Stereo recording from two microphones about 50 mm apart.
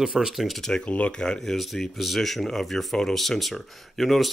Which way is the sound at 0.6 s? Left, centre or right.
Centre.